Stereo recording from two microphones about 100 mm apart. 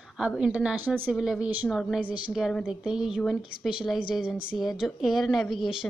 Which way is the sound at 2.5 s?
5° left (ahead or behind).